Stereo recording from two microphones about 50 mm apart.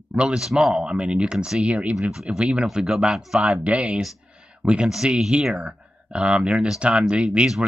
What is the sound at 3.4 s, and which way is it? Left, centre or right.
Speech, right.